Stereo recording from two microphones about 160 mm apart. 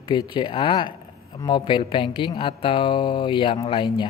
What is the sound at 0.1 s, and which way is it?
Speech, 30° left (ahead or behind).